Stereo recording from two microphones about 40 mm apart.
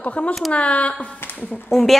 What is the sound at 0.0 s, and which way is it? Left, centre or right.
Speech, left.